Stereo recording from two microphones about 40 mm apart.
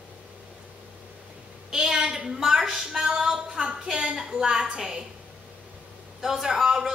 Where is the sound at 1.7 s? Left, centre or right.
Centre.